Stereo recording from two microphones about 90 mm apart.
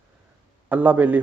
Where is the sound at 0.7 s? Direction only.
20° right (ahead or behind).